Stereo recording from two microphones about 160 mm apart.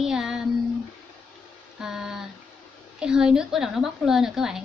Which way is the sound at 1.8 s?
5° right (ahead or behind).